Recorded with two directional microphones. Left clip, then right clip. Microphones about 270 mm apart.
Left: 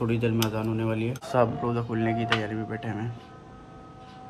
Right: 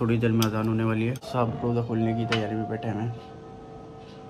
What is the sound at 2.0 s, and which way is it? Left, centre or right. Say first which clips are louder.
Speech: left 1 dB; centre.